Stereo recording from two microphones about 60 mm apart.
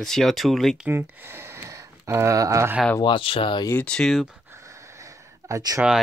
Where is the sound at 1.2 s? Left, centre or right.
Right.